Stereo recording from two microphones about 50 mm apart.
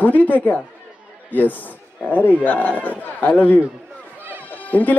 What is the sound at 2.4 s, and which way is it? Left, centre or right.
Speech, left.